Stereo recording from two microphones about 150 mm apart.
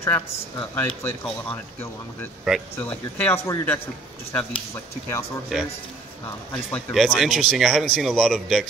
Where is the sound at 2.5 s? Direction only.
5° right (ahead or behind).